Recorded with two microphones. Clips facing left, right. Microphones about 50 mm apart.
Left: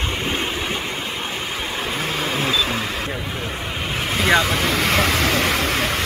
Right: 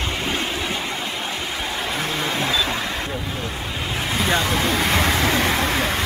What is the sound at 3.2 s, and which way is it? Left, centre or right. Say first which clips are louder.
Vehicle: left 1 dB; left.